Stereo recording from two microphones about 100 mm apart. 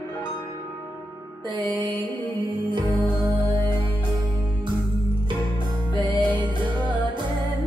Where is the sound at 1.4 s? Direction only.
50° right (ahead or behind).